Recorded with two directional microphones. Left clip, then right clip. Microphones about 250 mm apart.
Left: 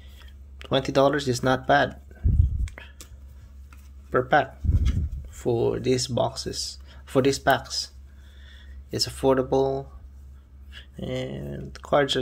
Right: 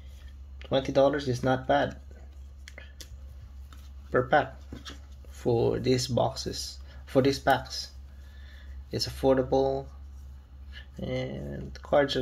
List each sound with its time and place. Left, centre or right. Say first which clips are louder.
0.6 s speech: left 2 dB; left
2.6 s a sound: left 3 dB; centre
4.1 s speech: left 3 dB; centre